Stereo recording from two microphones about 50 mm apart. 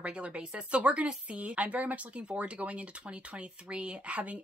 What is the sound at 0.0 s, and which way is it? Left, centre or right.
Speech, right.